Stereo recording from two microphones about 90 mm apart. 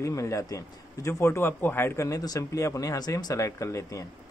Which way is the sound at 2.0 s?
40° left (ahead or behind).